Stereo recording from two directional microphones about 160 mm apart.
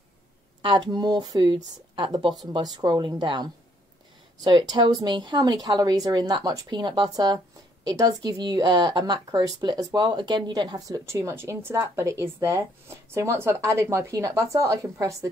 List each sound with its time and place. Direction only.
0.6 s a woman's voice: 30° right (ahead or behind)